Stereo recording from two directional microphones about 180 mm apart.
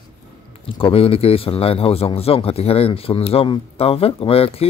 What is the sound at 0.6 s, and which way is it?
A man's voice, 30° left (ahead or behind).